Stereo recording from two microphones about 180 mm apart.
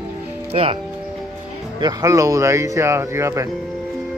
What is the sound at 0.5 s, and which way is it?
Speech, 30° right (ahead or behind).